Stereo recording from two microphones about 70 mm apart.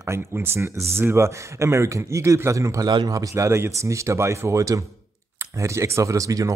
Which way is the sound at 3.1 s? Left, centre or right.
Right.